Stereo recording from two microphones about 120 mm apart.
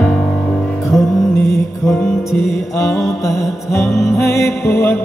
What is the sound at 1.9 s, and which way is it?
Music, 20° left (ahead or behind).